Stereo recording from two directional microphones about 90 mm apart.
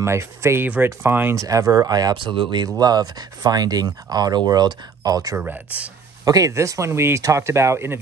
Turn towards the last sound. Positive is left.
turn(degrees=-30)  # may be behind; listen again after turning